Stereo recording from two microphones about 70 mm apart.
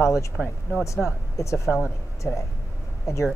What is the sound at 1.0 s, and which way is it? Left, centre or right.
Speech, centre.